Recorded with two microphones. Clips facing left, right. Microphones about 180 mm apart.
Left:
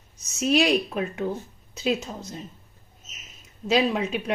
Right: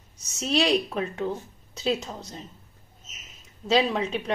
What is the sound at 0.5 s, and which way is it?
Speech, 5° left (ahead or behind).